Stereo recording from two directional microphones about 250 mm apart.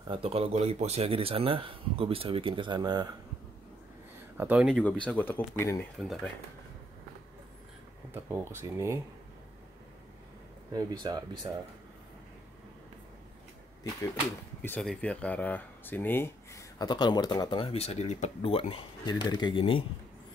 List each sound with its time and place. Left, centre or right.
0.1 s speech: right
4.4 s speech: centre
5.9 s speech: centre
8.1 s speech: centre
10.7 s speech: centre
14.6 s speech: centre